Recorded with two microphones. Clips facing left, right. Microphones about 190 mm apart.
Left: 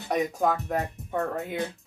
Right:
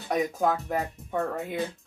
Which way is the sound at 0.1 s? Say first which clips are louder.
Even; centre (ahead or behind).